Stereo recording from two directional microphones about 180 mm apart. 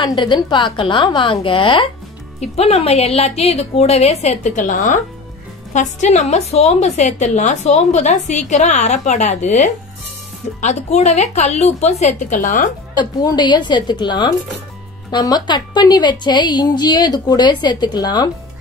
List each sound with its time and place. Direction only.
0.0 s a woman's voice: 25° left (ahead or behind); by 12.6 s 45° left (ahead or behind)
12.9 s a woman's voice: 25° left (ahead or behind)